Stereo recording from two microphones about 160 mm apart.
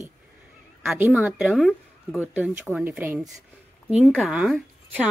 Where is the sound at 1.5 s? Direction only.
5° left (ahead or behind).